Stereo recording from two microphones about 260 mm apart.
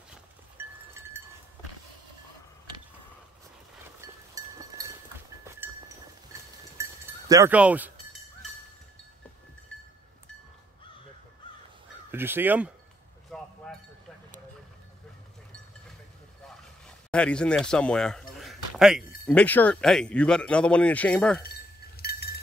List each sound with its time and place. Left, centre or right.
0.6 s goat: centre
4.0 s a sound: centre
6.8 s sheep: centre
12.1 s speech: centre
13.3 s chink: centre
16.4 s speech: centre
21.4 s chink: left